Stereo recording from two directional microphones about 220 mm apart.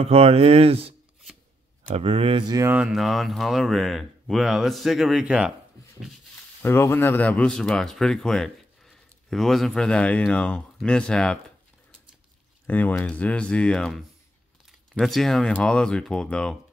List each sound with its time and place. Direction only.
0.0 s speech: 25° right (ahead or behind)
2.0 s speech: 25° right (ahead or behind); by 5.5 s 5° right (ahead or behind)
6.6 s speech: 10° left (ahead or behind)
12.6 s speech: 10° left (ahead or behind)